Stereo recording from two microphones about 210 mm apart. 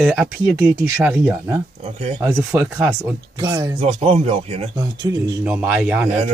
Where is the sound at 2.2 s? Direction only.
10° right (ahead or behind).